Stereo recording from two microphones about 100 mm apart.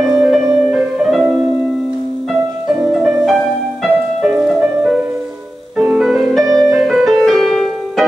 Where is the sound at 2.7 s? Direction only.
10° right (ahead or behind).